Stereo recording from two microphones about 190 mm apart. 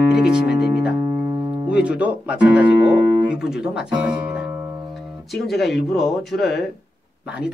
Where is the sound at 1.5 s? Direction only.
10° right (ahead or behind).